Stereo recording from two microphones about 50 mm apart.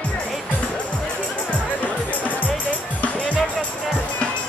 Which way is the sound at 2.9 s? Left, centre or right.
Left.